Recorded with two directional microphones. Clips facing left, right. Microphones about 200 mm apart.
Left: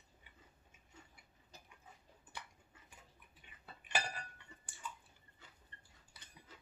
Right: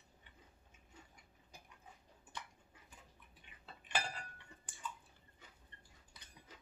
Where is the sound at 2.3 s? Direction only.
10° left (ahead or behind).